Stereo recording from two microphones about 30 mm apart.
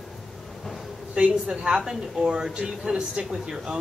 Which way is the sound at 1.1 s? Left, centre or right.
Right.